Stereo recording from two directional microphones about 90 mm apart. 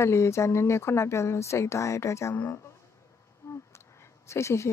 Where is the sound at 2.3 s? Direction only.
20° left (ahead or behind).